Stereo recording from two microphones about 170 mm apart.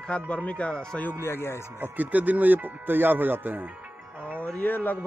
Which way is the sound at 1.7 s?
15° right (ahead or behind).